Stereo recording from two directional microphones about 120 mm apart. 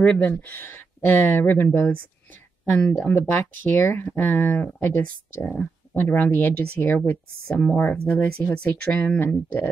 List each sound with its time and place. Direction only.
0.0 s speech: 10° left (ahead or behind)
5.4 s speech: centre (ahead or behind)
5.9 s speech: 15° left (ahead or behind)